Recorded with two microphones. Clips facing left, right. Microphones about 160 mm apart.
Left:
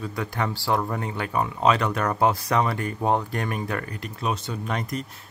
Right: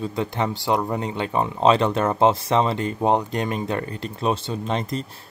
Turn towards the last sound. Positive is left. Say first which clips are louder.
# right 4 dB
turn(degrees=-25)  # may be behind; listen again after turning